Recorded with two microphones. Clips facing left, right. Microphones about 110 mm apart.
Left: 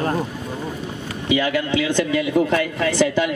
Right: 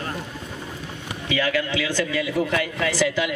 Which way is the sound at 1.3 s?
20° left (ahead or behind).